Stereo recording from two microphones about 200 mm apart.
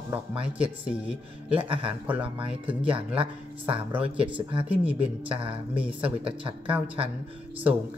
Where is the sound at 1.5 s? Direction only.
25° right (ahead or behind).